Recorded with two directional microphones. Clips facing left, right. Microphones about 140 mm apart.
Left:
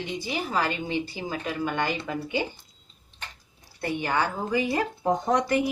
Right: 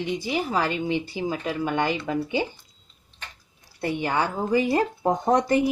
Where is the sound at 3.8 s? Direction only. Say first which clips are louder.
Right 2 dB; 25° right (ahead or behind).